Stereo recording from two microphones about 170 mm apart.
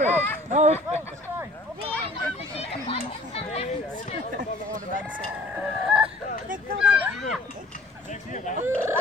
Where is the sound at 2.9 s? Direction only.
35° left (ahead or behind).